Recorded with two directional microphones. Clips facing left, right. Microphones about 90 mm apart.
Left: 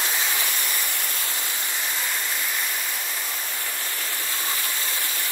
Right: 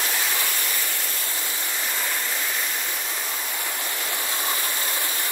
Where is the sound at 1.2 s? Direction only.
20° right (ahead or behind).